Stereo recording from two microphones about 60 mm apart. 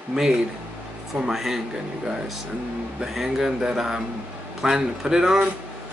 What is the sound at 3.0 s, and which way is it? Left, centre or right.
Speech, centre.